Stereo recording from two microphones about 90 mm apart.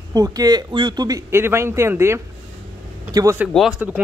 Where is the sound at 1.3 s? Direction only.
30° right (ahead or behind).